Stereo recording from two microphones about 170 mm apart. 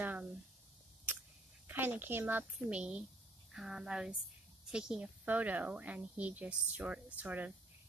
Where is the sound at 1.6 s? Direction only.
10° right (ahead or behind).